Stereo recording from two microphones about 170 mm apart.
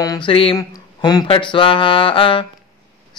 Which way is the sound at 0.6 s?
20° left (ahead or behind).